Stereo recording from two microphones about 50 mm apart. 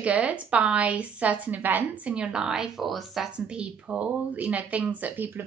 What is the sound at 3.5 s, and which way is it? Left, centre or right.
A woman's voice, right.